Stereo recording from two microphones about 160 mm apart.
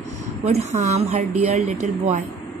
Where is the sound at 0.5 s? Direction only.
45° right (ahead or behind).